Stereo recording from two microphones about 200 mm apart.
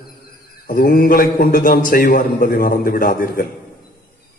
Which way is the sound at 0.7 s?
45° left (ahead or behind).